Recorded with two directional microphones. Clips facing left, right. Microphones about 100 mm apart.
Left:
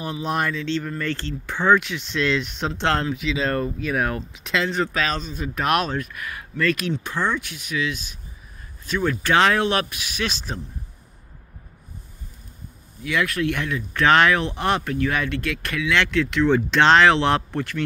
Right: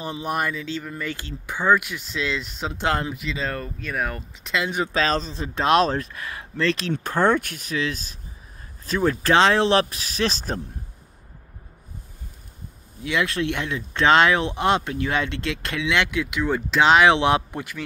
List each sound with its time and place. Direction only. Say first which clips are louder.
0.0 s speech: left 1 dB; 20° right (ahead or behind)
3.2 s speech: left 5 dB; centre (ahead or behind)
4.6 s speech: left 2 dB; 15° right (ahead or behind)
4.9 s speech: right 2 dB; 35° right (ahead or behind)
6.9 s speech: right 4 dB; 45° right (ahead or behind)
13.0 s speech: left 1 dB; 25° right (ahead or behind)